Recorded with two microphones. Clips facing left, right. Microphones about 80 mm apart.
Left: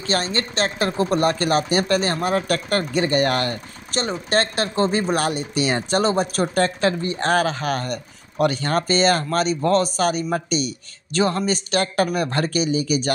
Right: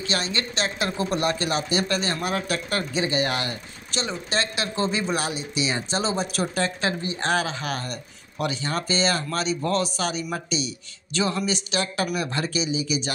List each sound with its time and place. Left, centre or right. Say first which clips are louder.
0.0 s speech: left 4 dB; left
2.4 s speech: left 5 dB; left